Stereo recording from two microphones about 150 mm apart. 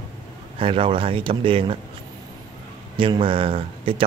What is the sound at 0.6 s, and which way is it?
A man's voice, 35° right (ahead or behind).